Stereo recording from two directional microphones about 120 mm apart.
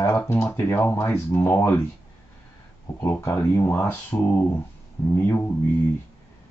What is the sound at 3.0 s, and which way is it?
Speech, 20° left (ahead or behind).